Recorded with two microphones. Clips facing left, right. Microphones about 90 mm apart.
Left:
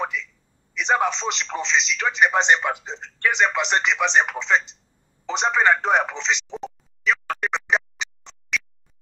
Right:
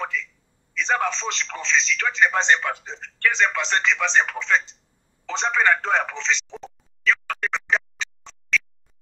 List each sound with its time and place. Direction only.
0.0 s a man's voice: 20° left (ahead or behind)
5.2 s telephone: 20° left (ahead or behind)